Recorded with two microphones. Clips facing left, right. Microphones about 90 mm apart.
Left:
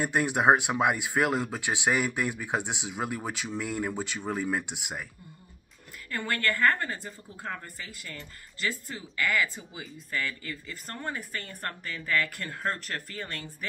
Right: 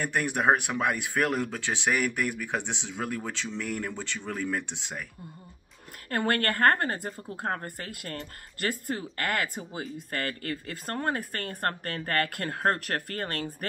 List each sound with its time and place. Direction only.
0.0 s speech: 15° left (ahead or behind)
6.0 s speech: 55° right (ahead or behind)